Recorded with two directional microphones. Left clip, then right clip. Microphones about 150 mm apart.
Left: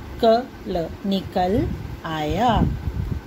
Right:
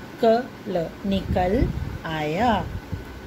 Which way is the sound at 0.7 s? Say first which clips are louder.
Even; 35° left (ahead or behind).